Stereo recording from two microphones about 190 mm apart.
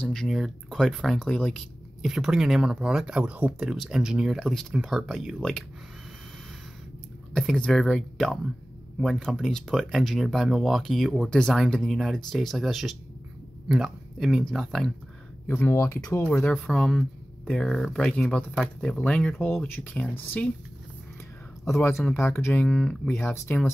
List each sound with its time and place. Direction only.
0.0 s speech: centre (ahead or behind)
7.3 s speech: 5° left (ahead or behind)
21.6 s speech: 15° left (ahead or behind)